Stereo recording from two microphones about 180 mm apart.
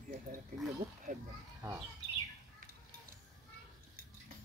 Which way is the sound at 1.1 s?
45° right (ahead or behind).